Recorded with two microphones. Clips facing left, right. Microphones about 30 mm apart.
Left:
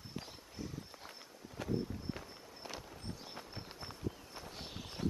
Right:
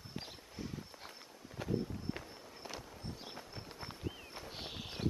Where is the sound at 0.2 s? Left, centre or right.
Centre.